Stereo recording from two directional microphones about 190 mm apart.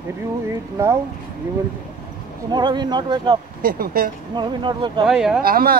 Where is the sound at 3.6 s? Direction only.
50° right (ahead or behind).